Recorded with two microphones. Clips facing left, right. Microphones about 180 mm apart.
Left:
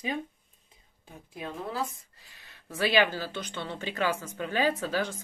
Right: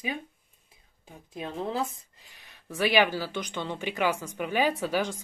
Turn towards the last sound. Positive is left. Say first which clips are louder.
# right 2 dB
turn(degrees=-15)  # may be behind; listen again after turning